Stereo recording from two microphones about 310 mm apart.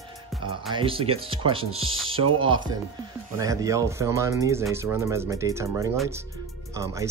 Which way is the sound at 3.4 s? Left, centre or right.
Centre.